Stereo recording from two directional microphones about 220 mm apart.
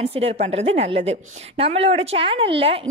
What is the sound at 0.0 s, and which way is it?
A woman's voice, 25° right (ahead or behind).